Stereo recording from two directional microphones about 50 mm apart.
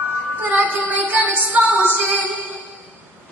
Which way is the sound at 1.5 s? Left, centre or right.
Right.